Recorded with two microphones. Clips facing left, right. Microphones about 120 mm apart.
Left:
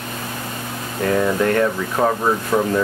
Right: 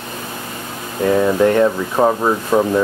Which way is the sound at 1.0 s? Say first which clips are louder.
Right 4 dB; 20° right (ahead or behind).